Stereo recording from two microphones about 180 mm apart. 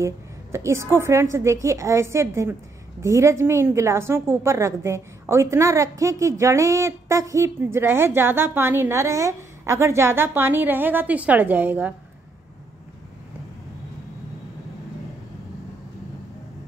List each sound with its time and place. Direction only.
0.0 s a woman's voice: 15° right (ahead or behind)